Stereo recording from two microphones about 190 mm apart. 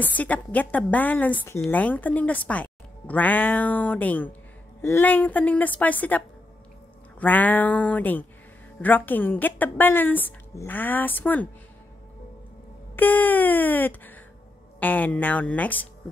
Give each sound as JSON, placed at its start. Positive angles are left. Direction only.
{"t": 0.0, "sound": "a woman's voice", "side_deg": 10}
{"t": 12.9, "sound": "a woman's voice", "side_deg": 10}